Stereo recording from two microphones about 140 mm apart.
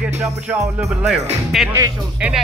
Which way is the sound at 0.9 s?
Centre (ahead or behind).